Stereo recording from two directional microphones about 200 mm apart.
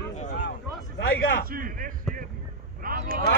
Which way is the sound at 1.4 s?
45° right (ahead or behind).